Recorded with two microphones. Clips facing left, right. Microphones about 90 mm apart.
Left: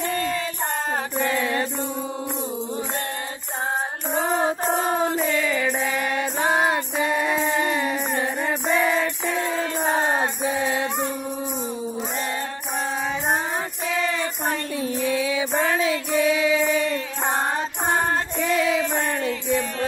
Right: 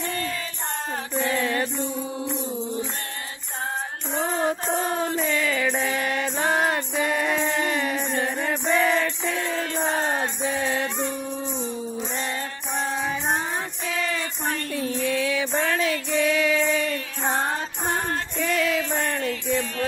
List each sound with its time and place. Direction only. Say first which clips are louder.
1.1 s mantra: right 1 dB; 15° left (ahead or behind)
4.1 s music: left 2 dB; 20° left (ahead or behind)
4.7 s chant: left 3 dB; 20° left (ahead or behind)
6.2 s music: left 2 dB; 15° left (ahead or behind)
14.5 s music: left 1 dB; 15° left (ahead or behind)